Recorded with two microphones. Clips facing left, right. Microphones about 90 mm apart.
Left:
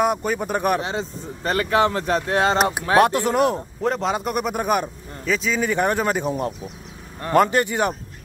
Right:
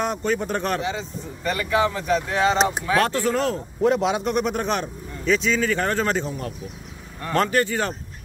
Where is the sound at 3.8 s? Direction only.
Centre (ahead or behind).